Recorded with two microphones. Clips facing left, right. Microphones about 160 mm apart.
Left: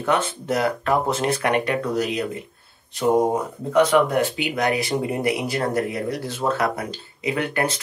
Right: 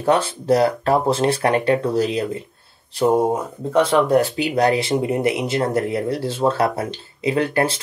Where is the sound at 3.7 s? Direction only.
30° right (ahead or behind).